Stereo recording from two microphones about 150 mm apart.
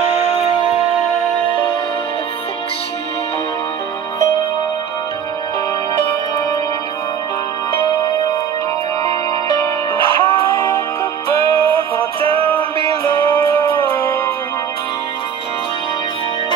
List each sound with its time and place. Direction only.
1.5 s music: 35° left (ahead or behind)
9.9 s music: 35° right (ahead or behind)
11.2 s music: 20° left (ahead or behind)
12.0 s music: 40° right (ahead or behind)
13.0 s music: 20° left (ahead or behind)